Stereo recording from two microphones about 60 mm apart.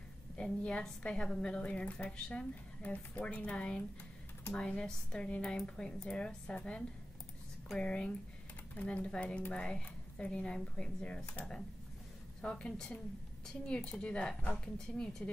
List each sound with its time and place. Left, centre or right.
0.4 s a woman's voice: centre
2.8 s a woman's voice: left
7.7 s a woman's voice: centre
12.4 s a woman's voice: centre